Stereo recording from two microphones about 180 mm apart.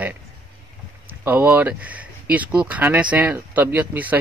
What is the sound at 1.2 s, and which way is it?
Speech, 10° right (ahead or behind).